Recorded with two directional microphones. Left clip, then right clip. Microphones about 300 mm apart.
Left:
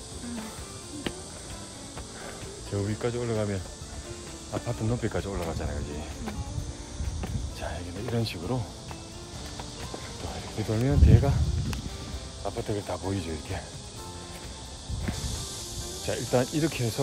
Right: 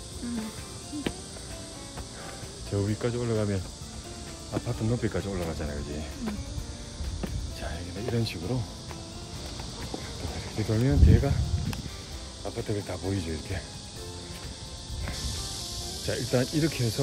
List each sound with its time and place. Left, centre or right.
1.1 s music: centre
2.7 s speech: centre
7.2 s music: centre
10.6 s speech: centre
16.1 s speech: centre